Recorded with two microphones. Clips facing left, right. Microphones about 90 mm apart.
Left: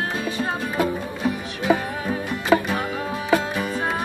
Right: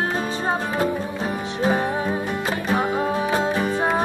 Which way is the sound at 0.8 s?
35° right (ahead or behind).